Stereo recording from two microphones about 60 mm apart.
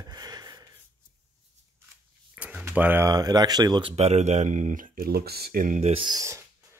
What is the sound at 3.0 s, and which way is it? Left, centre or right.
Speech, right.